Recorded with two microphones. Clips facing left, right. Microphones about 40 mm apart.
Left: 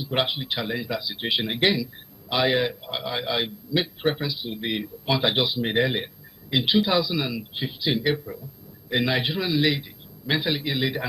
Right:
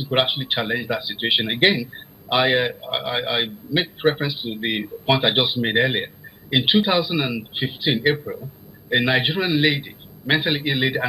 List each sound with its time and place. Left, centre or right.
0.0 s speech: right